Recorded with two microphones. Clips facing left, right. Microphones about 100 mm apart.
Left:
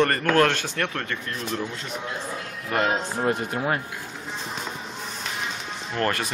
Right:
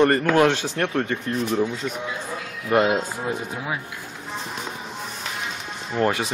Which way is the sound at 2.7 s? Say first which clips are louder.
Right 5 dB; 10° right (ahead or behind).